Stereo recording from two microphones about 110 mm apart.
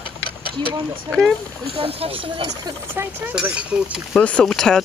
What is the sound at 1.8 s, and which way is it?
Speech, 60° right (ahead or behind).